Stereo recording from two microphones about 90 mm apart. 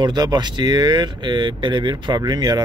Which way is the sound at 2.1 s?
50° right (ahead or behind).